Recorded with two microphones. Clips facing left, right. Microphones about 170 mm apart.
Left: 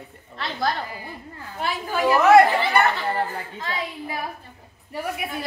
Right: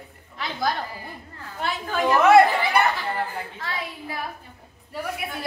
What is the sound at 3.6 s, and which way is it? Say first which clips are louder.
Speech: left 3 dB; 20° left (ahead or behind).